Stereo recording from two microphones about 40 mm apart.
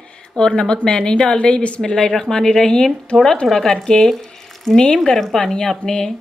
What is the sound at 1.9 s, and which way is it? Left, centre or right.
Speech, centre.